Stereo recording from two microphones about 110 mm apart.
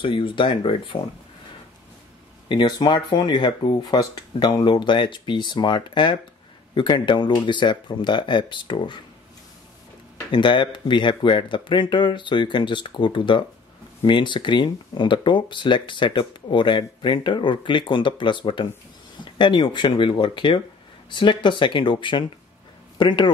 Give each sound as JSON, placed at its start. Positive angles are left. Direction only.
{"t": 0.0, "sound": "speech", "side_deg": 50}
{"t": 2.4, "sound": "speech", "side_deg": 40}
{"t": 10.3, "sound": "speech", "side_deg": 50}